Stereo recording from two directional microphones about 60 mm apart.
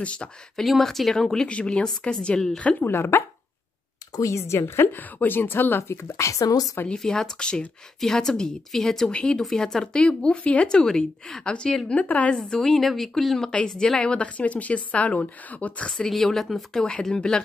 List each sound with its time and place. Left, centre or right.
0.0 s speech: centre
0.6 s a woman's voice: centre
2.8 s speech: left
4.1 s speech: left
5.8 s a woman's voice: left
6.9 s speech: centre
11.9 s speech: left
12.3 s a woman's voice: centre
13.5 s speech: centre
15.9 s a woman's voice: centre
17.1 s speech: centre